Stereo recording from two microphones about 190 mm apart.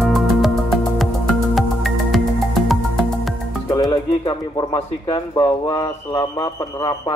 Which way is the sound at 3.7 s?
25° left (ahead or behind).